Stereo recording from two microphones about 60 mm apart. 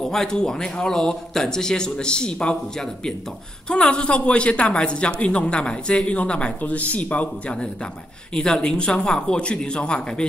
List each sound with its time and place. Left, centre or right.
0.1 s a woman's voice: centre